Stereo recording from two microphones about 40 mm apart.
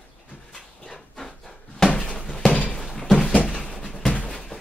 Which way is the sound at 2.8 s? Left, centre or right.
Centre.